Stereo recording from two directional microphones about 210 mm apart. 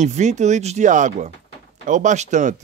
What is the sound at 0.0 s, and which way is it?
Speech, 35° right (ahead or behind).